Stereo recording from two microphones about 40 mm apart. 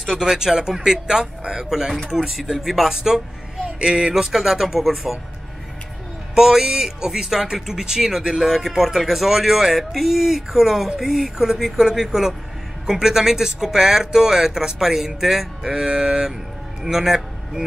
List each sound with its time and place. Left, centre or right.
0.2 s speech: centre
6.3 s speech: centre
8.5 s speech: centre
16.8 s a sound: centre